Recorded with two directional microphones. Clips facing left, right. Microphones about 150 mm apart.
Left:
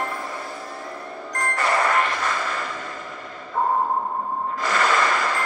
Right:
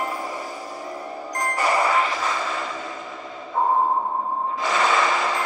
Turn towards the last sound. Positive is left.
turn(degrees=0)  # may be behind; listen again after turning